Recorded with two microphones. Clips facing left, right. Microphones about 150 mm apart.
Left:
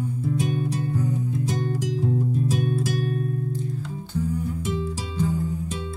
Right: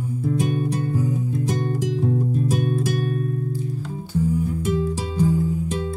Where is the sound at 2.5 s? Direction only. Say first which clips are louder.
Right 2 dB; 55° right (ahead or behind).